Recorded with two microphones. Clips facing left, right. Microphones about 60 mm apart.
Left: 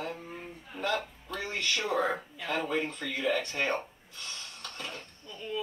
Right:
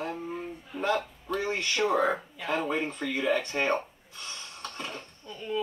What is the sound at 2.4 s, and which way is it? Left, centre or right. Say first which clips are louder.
Speech: right 2 dB; right.